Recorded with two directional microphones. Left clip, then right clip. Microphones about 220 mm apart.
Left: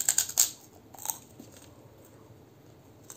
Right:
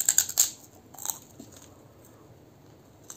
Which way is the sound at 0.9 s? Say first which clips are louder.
Right 1 dB; centre (ahead or behind).